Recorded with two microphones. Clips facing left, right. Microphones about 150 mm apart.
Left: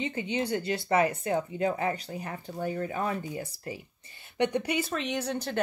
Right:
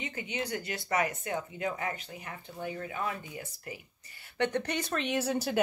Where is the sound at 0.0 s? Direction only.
25° left (ahead or behind).